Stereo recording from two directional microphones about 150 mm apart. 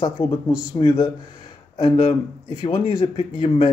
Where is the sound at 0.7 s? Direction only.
25° left (ahead or behind).